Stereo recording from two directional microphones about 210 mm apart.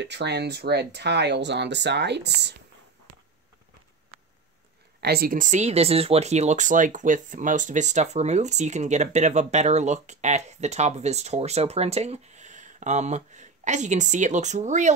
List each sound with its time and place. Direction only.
0.0 s speech: 55° right (ahead or behind)
5.0 s speech: 45° right (ahead or behind)